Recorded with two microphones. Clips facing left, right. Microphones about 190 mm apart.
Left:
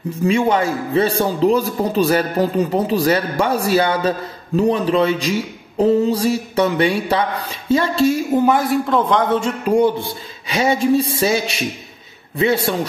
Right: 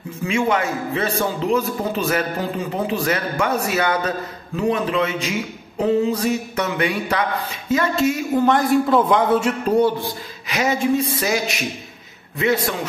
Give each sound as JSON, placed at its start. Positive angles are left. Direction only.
{"t": 0.2, "sound": "a man's voice", "side_deg": 35}
{"t": 8.4, "sound": "a man's voice", "side_deg": 5}
{"t": 10.5, "sound": "a man's voice", "side_deg": 30}